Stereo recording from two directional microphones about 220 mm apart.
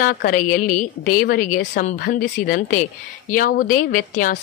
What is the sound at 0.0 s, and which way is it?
Speech, 40° left (ahead or behind).